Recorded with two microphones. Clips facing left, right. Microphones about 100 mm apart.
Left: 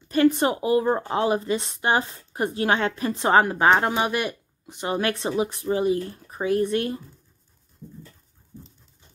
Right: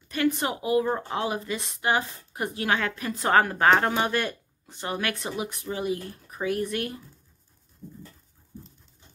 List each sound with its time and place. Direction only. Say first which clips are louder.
0.1 s a woman's voice: left 6 dB; 35° left (ahead or behind); by 4.9 s 20° left (ahead or behind)
4.9 s speech: left 7 dB; 30° left (ahead or behind)